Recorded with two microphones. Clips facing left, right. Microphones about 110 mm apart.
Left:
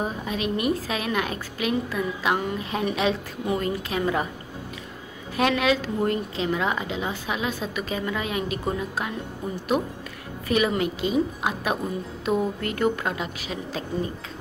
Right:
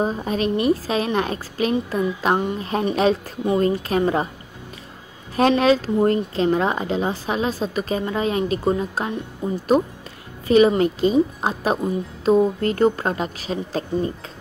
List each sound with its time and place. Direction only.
0.0 s speech: 40° right (ahead or behind)
5.3 s speech: 35° right (ahead or behind)